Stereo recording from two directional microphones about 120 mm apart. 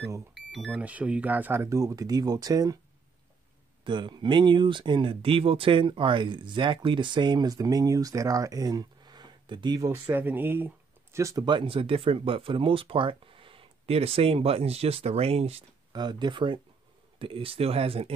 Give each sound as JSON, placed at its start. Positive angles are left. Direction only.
{"t": 0.3, "sound": "speech", "side_deg": 0}
{"t": 3.8, "sound": "speech", "side_deg": -40}
{"t": 9.8, "sound": "speech", "side_deg": -20}
{"t": 11.4, "sound": "speech", "side_deg": -40}
{"t": 15.9, "sound": "speech", "side_deg": -35}